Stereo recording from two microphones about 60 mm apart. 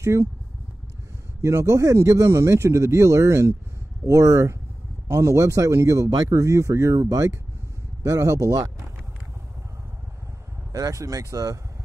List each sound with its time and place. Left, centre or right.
0.0 s speech: right
1.4 s speech: right
4.0 s speech: right
5.9 s speech: right
6.3 s speech: right
10.7 s speech: right